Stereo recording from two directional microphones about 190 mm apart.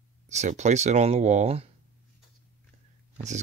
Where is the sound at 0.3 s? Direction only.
35° right (ahead or behind).